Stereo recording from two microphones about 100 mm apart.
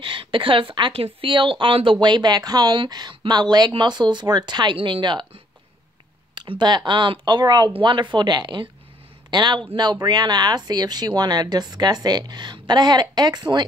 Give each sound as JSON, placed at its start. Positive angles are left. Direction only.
{"t": 0.0, "sound": "speech", "side_deg": -60}
{"t": 4.7, "sound": "speech", "side_deg": -60}